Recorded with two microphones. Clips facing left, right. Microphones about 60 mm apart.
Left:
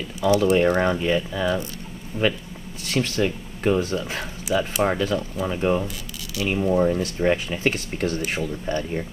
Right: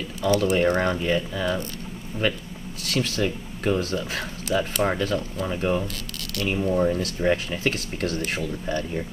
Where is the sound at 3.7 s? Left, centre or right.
Centre.